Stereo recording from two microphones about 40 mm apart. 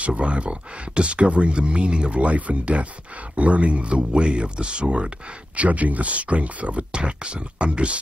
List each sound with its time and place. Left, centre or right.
0.0 s speech: right
5.6 s speech: right